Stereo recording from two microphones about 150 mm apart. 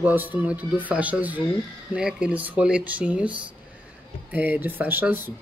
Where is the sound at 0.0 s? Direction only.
10° right (ahead or behind).